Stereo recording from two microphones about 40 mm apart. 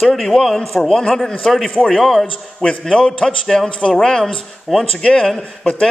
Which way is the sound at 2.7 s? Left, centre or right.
Centre.